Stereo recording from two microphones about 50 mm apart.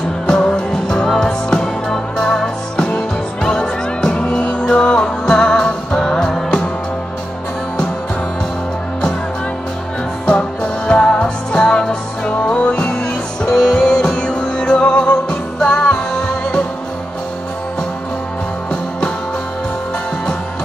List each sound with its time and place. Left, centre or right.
0.3 s music: centre
1.0 s music: centre
10.2 s music: centre